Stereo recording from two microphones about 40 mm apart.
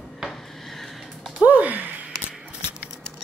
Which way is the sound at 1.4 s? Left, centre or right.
Right.